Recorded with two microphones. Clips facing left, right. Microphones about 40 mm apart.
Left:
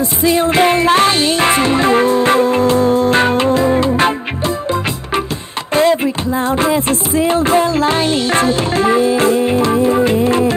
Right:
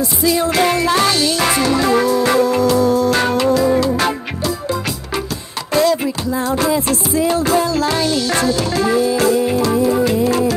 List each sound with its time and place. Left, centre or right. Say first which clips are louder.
0.2 s music: left 3 dB; left
5.7 s music: left 3 dB; left